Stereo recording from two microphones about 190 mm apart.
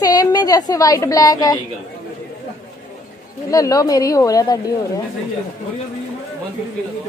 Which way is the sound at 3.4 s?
20° left (ahead or behind).